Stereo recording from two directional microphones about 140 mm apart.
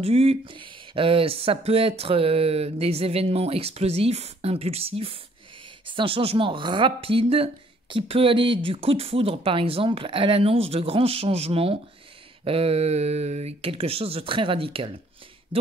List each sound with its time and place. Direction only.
0.0 s speech: 45° right (ahead or behind)